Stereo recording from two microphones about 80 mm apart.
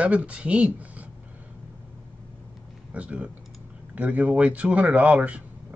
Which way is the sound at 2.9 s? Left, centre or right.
Centre.